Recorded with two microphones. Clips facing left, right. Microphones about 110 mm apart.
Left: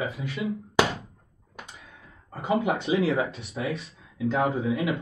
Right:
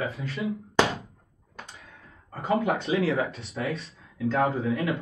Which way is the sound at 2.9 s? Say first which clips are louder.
Left 3 dB; 20° left (ahead or behind).